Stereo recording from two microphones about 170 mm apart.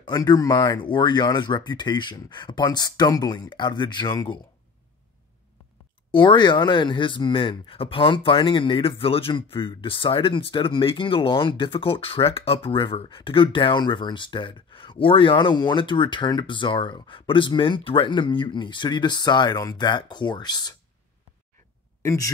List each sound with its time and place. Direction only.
0.0 s speech: 25° left (ahead or behind)
6.1 s speech: 25° left (ahead or behind)
22.0 s speech: 20° left (ahead or behind)